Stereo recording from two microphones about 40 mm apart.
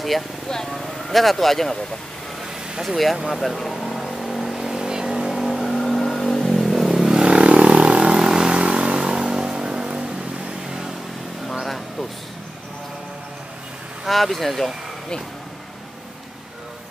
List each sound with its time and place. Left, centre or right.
0.5 s speech: centre
3.3 s vehicle: centre
5.4 s vehicle: centre
7.2 s vehicle: right
11.6 s a sound: centre
14.0 s speech: centre